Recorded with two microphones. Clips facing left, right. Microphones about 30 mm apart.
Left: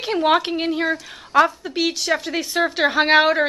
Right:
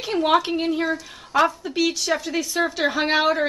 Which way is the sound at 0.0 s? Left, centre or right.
Centre.